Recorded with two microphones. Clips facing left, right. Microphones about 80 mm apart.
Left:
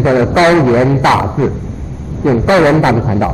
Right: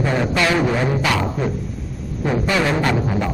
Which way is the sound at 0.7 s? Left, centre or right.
Left.